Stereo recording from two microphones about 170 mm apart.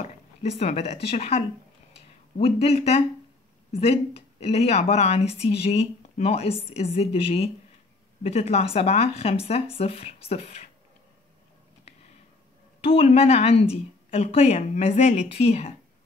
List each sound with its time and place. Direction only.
0.0 s a sound: 40° left (ahead or behind)
1.1 s speech: 35° left (ahead or behind)
12.8 s speech: 35° left (ahead or behind)